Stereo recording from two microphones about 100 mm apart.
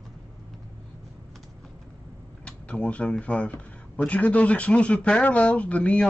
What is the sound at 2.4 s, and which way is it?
Speech, 10° left (ahead or behind).